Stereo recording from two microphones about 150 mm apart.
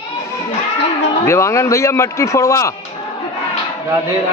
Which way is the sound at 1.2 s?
20° left (ahead or behind).